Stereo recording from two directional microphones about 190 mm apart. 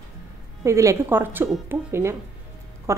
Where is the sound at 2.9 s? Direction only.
15° right (ahead or behind).